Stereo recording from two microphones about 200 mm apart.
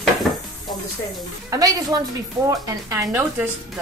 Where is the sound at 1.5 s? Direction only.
15° right (ahead or behind).